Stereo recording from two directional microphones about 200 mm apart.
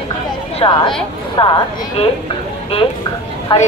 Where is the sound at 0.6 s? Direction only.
25° left (ahead or behind).